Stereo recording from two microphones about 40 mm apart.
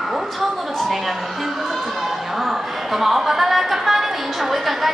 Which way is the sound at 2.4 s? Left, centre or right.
Centre.